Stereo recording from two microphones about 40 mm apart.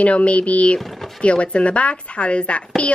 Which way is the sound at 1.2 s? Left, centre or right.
Left.